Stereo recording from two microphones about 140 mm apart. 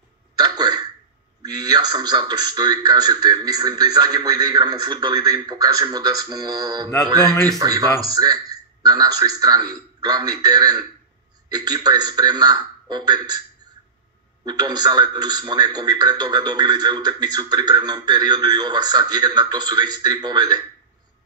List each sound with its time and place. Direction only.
0.4 s quack: 30° right (ahead or behind)
1.4 s a man's voice: 30° right (ahead or behind)
14.4 s a man's voice: 30° right (ahead or behind)